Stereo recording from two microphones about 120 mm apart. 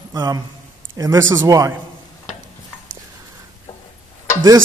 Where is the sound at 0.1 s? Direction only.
35° right (ahead or behind).